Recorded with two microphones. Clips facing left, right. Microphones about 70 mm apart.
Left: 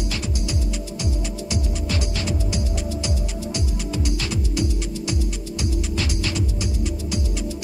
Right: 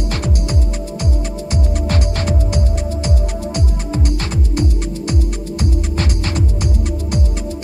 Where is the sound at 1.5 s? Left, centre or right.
Right.